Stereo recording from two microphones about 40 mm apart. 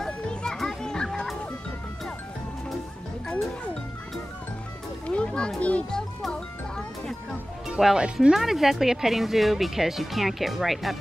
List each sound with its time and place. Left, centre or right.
0.3 s children playing: left
5.0 s music: left
5.6 s children playing: left
7.8 s speech: right
8.3 s speech: centre